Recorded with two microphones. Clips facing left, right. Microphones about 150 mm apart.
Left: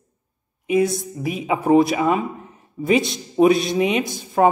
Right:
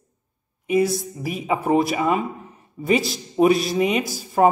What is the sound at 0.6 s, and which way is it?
Speech, centre (ahead or behind).